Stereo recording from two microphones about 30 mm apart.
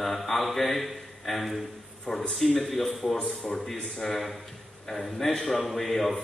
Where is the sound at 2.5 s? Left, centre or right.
Centre.